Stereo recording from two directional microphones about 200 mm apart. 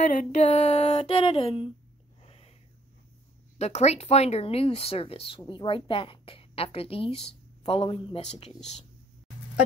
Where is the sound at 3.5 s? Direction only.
35° left (ahead or behind).